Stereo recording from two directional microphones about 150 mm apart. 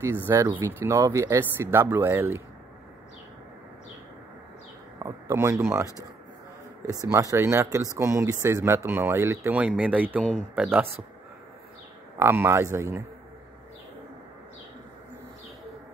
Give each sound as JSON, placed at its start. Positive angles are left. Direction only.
{"t": 0.3, "sound": "speech", "side_deg": -20}
{"t": 4.9, "sound": "speech", "side_deg": -20}
{"t": 6.9, "sound": "speech", "side_deg": -25}
{"t": 12.2, "sound": "speech", "side_deg": -15}